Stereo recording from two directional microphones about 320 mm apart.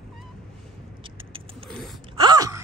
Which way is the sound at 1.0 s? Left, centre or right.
Centre.